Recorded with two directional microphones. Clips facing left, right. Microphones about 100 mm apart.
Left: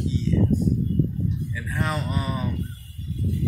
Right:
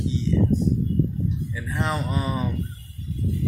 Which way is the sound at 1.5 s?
20° right (ahead or behind).